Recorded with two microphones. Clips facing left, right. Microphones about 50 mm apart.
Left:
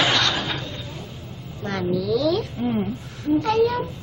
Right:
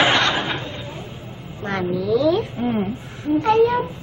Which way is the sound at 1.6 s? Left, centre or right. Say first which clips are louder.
Right 1 dB; right.